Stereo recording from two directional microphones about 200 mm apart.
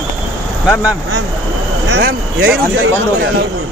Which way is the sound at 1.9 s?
50° right (ahead or behind).